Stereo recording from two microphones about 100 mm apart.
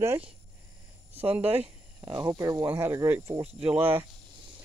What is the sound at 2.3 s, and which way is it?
Speech, 40° right (ahead or behind).